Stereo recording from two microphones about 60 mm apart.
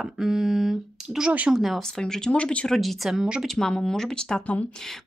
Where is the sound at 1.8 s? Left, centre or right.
Centre.